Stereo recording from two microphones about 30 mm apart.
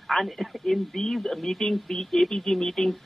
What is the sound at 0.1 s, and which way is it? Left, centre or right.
Speech, centre.